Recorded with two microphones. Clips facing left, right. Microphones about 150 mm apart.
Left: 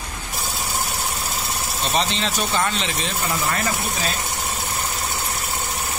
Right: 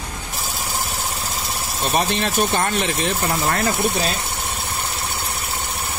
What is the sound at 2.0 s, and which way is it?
Speech, 55° right (ahead or behind).